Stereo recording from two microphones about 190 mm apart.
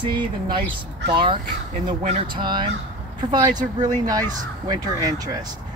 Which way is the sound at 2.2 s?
25° right (ahead or behind).